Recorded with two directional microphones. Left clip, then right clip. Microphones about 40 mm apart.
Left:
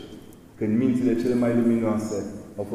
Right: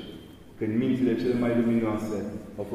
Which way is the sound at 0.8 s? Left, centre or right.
Left.